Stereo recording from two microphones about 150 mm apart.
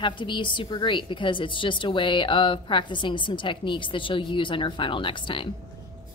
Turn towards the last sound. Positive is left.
turn(degrees=35)  # may be behind; listen again after turning